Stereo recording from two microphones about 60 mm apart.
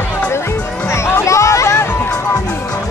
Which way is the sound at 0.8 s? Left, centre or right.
Left.